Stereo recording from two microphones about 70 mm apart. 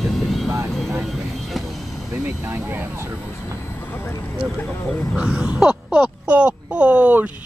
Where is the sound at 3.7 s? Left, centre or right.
Left.